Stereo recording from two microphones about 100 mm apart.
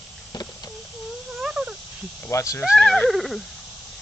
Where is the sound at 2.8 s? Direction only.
10° left (ahead or behind).